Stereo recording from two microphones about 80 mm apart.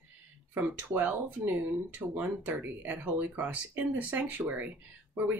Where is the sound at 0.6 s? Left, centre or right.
Right.